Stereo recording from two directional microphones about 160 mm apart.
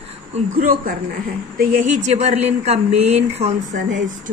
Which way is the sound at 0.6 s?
60° right (ahead or behind).